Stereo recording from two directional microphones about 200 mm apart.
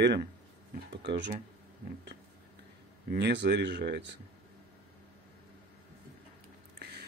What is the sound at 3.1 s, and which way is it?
Speech, 55° right (ahead or behind).